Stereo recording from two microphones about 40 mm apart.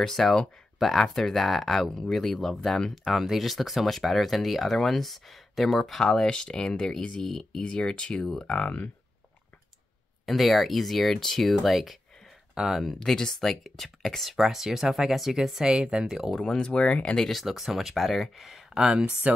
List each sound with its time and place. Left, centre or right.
0.0 s speech: centre
6.2 s speech: left
7.2 s speech: centre
7.6 s speech: left
10.2 s speech: centre
12.8 s speech: centre
14.3 s speech: centre
16.3 s speech: centre
16.7 s speech: left
17.0 s speech: centre
17.3 s speech: centre
18.9 s speech: centre